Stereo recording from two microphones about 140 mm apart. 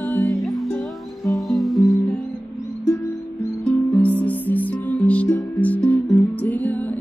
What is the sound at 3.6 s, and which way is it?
Music, 10° left (ahead or behind).